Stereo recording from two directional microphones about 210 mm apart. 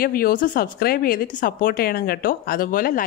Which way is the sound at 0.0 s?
45° left (ahead or behind).